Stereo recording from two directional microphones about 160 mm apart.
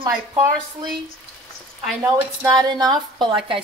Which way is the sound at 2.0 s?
20° right (ahead or behind).